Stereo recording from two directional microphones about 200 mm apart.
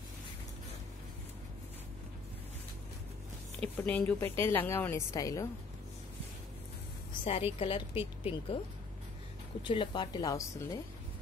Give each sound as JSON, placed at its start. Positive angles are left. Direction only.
{"t": 3.8, "sound": "a woman's voice", "side_deg": 10}
{"t": 7.2, "sound": "speech", "side_deg": 30}
{"t": 9.6, "sound": "speech", "side_deg": 25}